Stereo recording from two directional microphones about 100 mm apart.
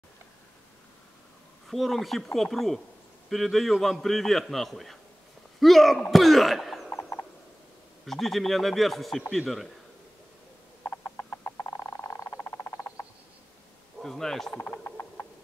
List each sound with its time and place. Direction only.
1.7 s a man's voice: centre (ahead or behind)
8.0 s a man's voice: centre (ahead or behind)
10.9 s frog: 15° left (ahead or behind)
14.0 s speech: 5° left (ahead or behind)
14.6 s a sound: 15° left (ahead or behind)